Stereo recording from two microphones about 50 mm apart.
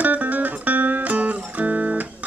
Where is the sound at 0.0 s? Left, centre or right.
Right.